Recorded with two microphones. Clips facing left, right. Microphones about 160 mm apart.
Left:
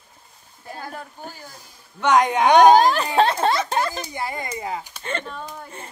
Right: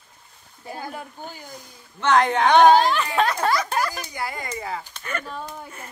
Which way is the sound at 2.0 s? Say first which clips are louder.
Left 1 dB; 15° left (ahead or behind).